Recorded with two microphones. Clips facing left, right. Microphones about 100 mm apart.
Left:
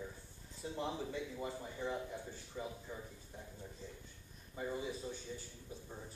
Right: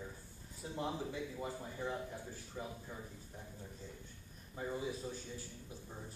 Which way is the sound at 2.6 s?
15° right (ahead or behind).